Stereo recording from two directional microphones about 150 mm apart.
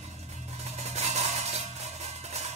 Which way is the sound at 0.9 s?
50° right (ahead or behind).